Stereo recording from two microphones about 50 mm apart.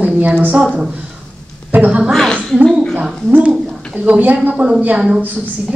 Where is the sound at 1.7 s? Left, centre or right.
Right.